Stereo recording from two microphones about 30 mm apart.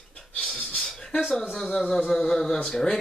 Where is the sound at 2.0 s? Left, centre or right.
Centre.